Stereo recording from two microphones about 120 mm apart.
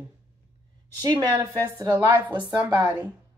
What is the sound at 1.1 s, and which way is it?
Speech, 30° right (ahead or behind).